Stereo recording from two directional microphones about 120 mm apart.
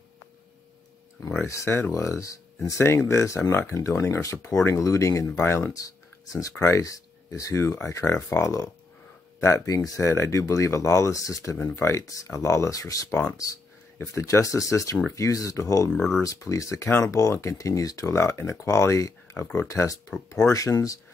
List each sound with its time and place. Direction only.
1.5 s speech: 25° left (ahead or behind)
15.9 s speech: 5° left (ahead or behind)
16.2 s speech: 25° left (ahead or behind)